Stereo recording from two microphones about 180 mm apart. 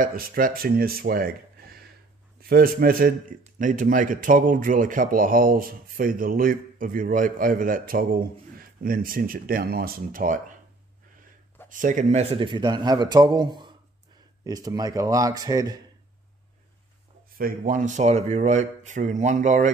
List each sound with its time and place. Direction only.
0.0 s a man's voice: 55° right (ahead or behind)
11.7 s a man's voice: 45° right (ahead or behind); by 15.8 s 20° right (ahead or behind)
17.4 s a man's voice: 50° right (ahead or behind)